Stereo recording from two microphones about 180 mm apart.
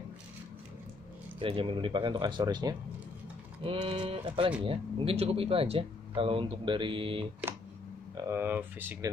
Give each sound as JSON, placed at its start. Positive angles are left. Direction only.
{"t": 1.4, "sound": "speech", "side_deg": -30}
{"t": 8.2, "sound": "speech", "side_deg": -15}